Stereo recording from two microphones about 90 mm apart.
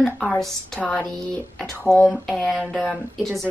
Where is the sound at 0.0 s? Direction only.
5° left (ahead or behind).